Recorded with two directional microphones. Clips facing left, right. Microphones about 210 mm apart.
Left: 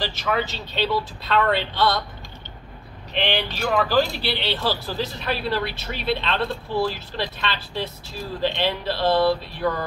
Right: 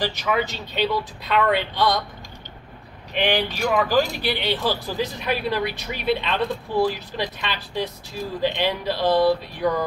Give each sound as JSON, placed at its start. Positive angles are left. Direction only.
{"t": 0.0, "sound": "speech", "side_deg": -15}
{"t": 3.1, "sound": "speech", "side_deg": -10}